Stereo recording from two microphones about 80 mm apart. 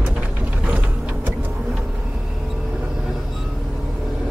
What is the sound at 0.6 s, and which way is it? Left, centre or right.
Mechanisms, centre.